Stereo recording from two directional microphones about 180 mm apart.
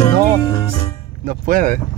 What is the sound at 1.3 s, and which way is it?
Speech, 50° right (ahead or behind).